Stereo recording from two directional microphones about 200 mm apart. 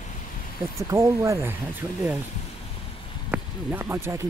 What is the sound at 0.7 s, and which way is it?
Speech, 15° right (ahead or behind).